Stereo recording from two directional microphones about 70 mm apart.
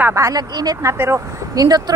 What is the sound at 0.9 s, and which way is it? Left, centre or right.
Speech, right.